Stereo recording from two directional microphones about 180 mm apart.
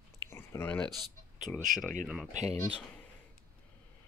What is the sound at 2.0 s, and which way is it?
Speech, 5° right (ahead or behind).